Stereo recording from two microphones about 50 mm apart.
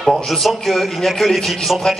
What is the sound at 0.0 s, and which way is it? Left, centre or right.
Speech, centre.